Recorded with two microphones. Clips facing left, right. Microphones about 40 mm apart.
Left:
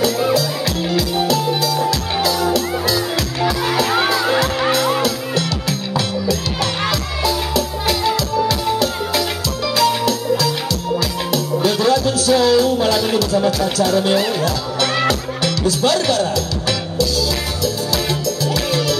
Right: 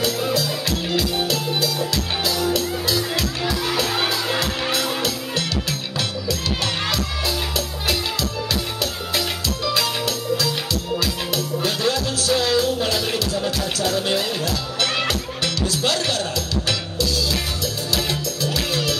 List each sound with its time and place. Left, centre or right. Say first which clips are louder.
0.0 s music: left 5 dB; left
2.2 s music: left 5 dB; left
4.4 s music: left 6 dB; left
11.3 s music: left 8 dB; left
15.4 s music: left 6 dB; right
15.9 s music: left 6 dB; left
17.9 s music: left 4 dB; right